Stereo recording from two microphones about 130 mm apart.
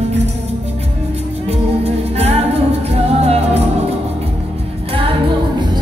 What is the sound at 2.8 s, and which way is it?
Music, 55° right (ahead or behind).